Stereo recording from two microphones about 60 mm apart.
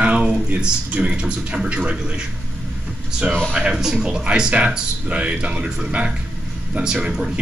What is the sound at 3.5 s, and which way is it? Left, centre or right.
A man's voice, centre.